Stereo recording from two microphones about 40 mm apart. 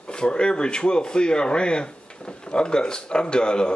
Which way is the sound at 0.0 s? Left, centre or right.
Left.